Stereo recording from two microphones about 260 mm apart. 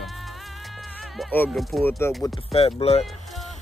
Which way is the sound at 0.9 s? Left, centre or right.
Centre.